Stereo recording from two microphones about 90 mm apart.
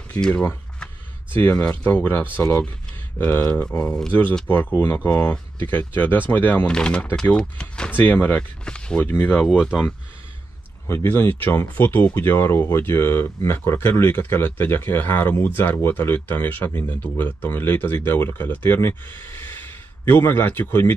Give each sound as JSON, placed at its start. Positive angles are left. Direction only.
{"t": 0.1, "sound": "a sound", "side_deg": 15}
{"t": 1.3, "sound": "speech", "side_deg": 20}
{"t": 4.1, "sound": "speech", "side_deg": 20}
{"t": 9.0, "sound": "speech", "side_deg": 25}
{"t": 9.5, "sound": "speech", "side_deg": -5}
{"t": 10.9, "sound": "speech", "side_deg": 30}